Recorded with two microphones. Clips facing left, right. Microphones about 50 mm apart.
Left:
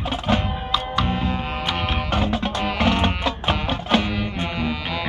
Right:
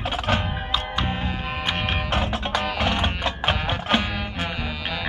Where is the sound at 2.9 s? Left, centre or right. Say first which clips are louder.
Left 3 dB; centre.